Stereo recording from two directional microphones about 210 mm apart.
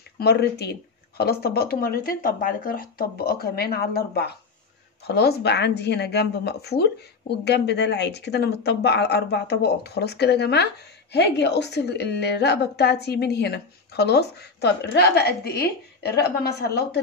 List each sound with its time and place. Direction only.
0.2 s a woman's voice: 50° left (ahead or behind)